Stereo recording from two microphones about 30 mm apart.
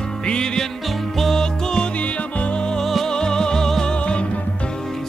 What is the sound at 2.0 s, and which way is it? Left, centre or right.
Music, left.